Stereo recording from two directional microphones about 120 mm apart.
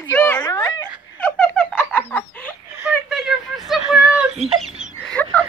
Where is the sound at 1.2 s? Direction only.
15° left (ahead or behind).